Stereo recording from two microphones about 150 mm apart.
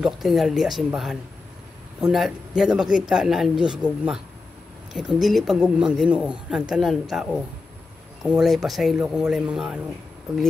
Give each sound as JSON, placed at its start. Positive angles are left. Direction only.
{"t": 0.0, "sound": "speech", "side_deg": 0}